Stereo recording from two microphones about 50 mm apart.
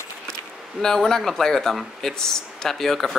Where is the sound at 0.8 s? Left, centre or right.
Centre.